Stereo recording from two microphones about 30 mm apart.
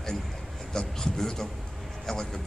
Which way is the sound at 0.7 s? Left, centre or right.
Centre.